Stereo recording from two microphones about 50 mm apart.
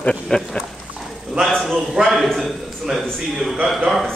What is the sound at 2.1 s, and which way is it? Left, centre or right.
Speech, centre.